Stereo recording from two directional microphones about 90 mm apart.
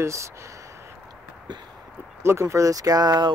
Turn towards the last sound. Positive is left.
turn(degrees=-50)  # may be behind; listen again after turning